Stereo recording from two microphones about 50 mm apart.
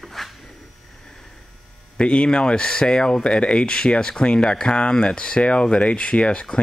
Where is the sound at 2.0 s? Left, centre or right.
Left.